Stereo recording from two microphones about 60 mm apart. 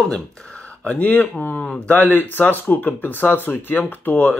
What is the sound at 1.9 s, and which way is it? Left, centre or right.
Speech, left.